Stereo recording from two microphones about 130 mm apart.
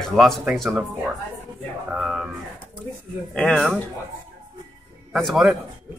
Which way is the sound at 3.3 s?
5° left (ahead or behind).